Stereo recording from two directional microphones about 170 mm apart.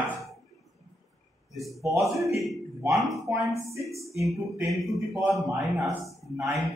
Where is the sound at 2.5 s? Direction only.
Centre (ahead or behind).